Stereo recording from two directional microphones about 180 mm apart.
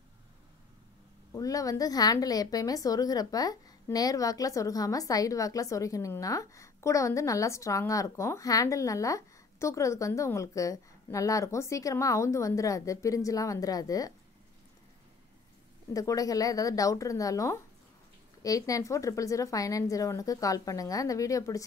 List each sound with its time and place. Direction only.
1.3 s a woman's voice: 20° left (ahead or behind)
15.9 s speech: 20° left (ahead or behind)